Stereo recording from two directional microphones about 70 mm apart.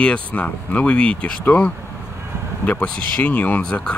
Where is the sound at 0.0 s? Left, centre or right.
Centre.